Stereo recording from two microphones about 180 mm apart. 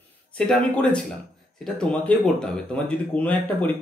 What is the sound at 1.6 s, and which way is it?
Speech, 5° left (ahead or behind).